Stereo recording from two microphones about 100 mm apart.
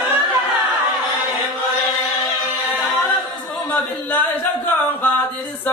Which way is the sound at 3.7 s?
20° left (ahead or behind).